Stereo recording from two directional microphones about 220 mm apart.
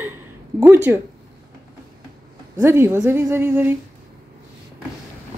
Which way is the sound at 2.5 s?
10° right (ahead or behind).